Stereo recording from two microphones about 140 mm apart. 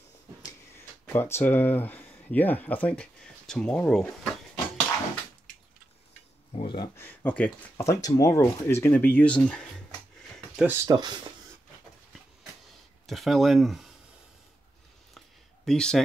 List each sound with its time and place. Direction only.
1.0 s speech: 15° left (ahead or behind)
6.6 s speech: 35° left (ahead or behind)
7.0 s speech: 10° left (ahead or behind)
7.7 s speech: 25° left (ahead or behind); by 9.7 s 10° left (ahead or behind)
10.5 s a sound: 10° right (ahead or behind)
10.9 s speech: 30° right (ahead or behind)
13.0 s speech: centre (ahead or behind)
15.1 s a sound: 5° left (ahead or behind)